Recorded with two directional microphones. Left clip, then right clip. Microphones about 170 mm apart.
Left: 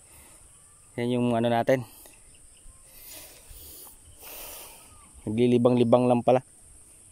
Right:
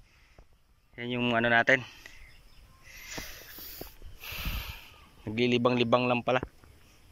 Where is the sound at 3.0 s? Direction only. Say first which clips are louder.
Right 7 dB; 20° left (ahead or behind).